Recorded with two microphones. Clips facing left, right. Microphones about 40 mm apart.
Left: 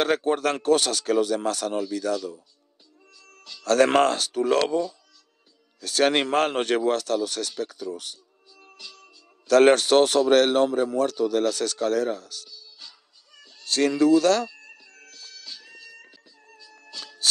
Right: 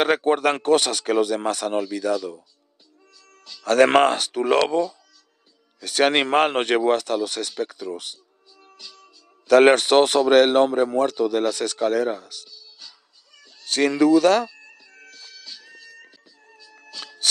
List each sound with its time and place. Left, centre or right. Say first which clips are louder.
0.0 s speech: right 3 dB; right
3.6 s speech: right 3 dB; right
5.8 s speech: right 2 dB; right
9.5 s speech: right 2 dB; right
12.4 s music: even; centre
13.7 s speech: right 2 dB; right
14.9 s bagpipes: right 2 dB; centre